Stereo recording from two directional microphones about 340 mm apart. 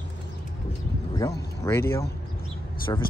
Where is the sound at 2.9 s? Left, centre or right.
Centre.